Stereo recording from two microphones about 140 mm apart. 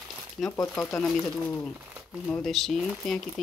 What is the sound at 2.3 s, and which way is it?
Speech, centre (ahead or behind).